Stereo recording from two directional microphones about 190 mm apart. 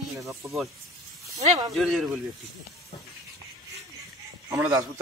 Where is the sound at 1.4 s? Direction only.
35° right (ahead or behind).